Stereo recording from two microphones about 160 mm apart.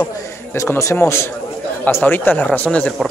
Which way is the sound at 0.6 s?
20° left (ahead or behind).